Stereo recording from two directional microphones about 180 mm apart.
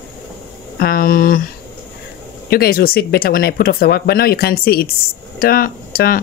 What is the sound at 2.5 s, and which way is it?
Speech, 60° left (ahead or behind).